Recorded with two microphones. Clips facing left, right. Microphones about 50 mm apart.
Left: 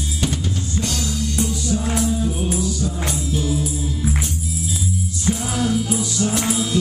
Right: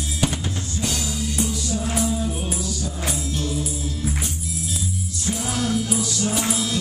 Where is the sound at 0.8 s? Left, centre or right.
Centre.